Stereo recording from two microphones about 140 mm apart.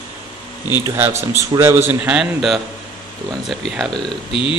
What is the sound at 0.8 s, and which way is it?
A man's voice, 15° right (ahead or behind).